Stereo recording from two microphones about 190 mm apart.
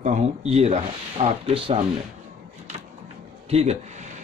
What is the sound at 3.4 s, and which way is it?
Speech, 35° right (ahead or behind).